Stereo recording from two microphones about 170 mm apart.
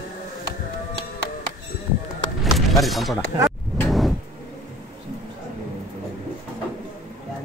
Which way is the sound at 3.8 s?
Centre (ahead or behind).